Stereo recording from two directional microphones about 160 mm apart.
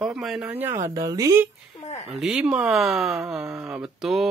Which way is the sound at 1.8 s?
45° left (ahead or behind).